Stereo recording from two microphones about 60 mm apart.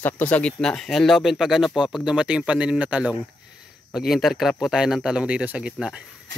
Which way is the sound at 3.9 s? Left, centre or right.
Centre.